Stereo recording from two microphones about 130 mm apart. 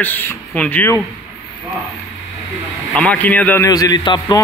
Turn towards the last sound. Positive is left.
turn(degrees=35)  # may be behind; listen again after turning